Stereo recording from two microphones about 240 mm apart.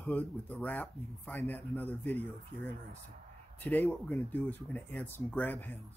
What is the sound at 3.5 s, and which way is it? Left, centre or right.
Speech, centre.